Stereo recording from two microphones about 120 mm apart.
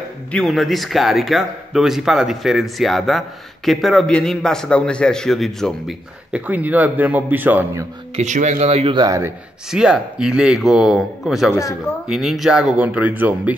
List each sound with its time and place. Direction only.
0.3 s speech: 5° left (ahead or behind)
6.3 s speech: 15° right (ahead or behind)
8.2 s speech: 80° right; by 8.9 s 60° right (ahead or behind)
8.9 s speech: 35° right (ahead or behind)
9.7 s speech: 5° right (ahead or behind)